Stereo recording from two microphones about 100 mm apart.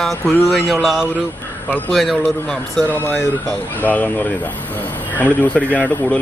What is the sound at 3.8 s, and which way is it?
Speech, 15° left (ahead or behind).